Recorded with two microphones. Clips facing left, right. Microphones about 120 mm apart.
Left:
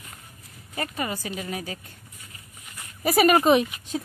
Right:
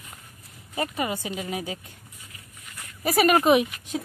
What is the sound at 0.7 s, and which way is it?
Speech, 15° right (ahead or behind).